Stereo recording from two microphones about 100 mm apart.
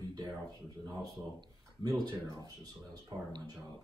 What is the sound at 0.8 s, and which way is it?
Speech, 40° right (ahead or behind).